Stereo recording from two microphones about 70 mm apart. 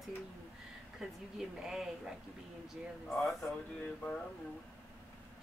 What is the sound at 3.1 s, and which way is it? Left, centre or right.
Speech, centre.